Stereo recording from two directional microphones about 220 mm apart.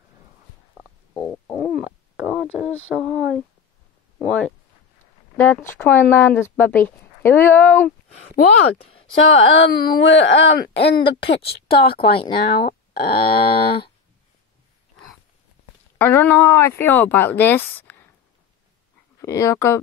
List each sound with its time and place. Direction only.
1.1 s stomach rumble: 10° left (ahead or behind)
1.8 s a sound: 5° right (ahead or behind)
4.3 s speech: 5° left (ahead or behind)
8.4 s speech: 80° left; by 10.5 s 55° left (ahead or behind)
11.2 s speech: 25° left (ahead or behind)
11.7 s speech: 45° left (ahead or behind)
12.0 s speech: 25° left (ahead or behind)
12.6 s a sound: 40° left (ahead or behind)
13.2 s speech: 25° left (ahead or behind)
16.0 s speech: 10° left (ahead or behind)
19.2 s speech: 15° left (ahead or behind)